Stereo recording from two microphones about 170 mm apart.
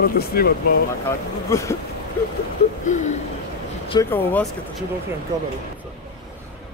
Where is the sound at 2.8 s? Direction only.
45° left (ahead or behind).